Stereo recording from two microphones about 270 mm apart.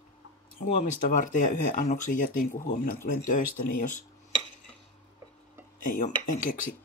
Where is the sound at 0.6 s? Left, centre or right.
Left.